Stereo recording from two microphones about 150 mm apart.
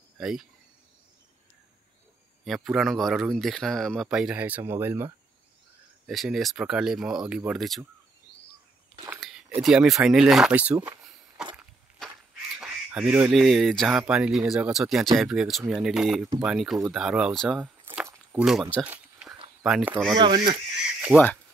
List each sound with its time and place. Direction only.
0.2 s speech: centre (ahead or behind)
2.4 s speech: centre (ahead or behind); by 5.1 s 15° right (ahead or behind)
6.0 s speech: centre (ahead or behind)
9.6 s speech: 5° right (ahead or behind)
12.5 s duck: 5° right (ahead or behind)
13.3 s speech: centre (ahead or behind)
17.8 s a sound: 10° right (ahead or behind)
19.6 s speech: 5° right (ahead or behind)
20.2 s speech: 30° right (ahead or behind)
21.1 s speech: 5° right (ahead or behind)